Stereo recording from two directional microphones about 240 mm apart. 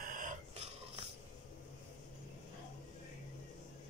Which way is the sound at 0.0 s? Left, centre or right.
Right.